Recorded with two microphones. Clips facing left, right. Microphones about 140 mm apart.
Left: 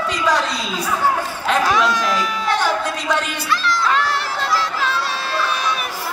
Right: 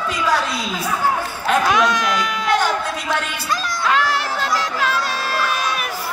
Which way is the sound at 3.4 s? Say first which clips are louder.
Left 2 dB; 40° right (ahead or behind).